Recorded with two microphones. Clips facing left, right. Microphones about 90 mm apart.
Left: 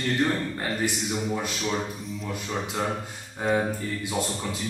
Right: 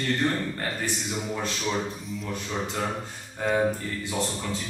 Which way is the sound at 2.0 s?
Centre (ahead or behind).